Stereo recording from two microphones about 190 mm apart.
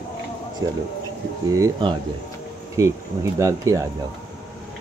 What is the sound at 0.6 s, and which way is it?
Speech, 20° right (ahead or behind).